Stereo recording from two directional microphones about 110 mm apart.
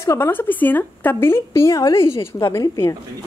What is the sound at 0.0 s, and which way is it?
A woman's voice, 25° left (ahead or behind).